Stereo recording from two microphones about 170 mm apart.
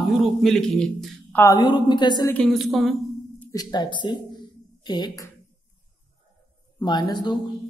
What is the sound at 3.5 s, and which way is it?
Speech, 20° left (ahead or behind).